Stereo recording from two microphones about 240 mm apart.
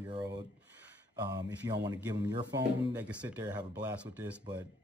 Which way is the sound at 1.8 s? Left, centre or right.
Centre.